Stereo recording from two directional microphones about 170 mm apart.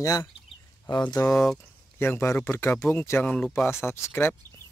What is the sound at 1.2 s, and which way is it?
Speech, 5° left (ahead or behind).